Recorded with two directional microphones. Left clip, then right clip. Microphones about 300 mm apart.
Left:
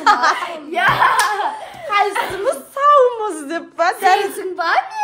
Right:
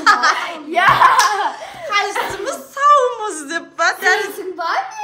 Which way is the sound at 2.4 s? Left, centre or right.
Centre.